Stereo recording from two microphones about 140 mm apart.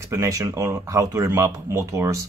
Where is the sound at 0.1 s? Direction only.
20° right (ahead or behind).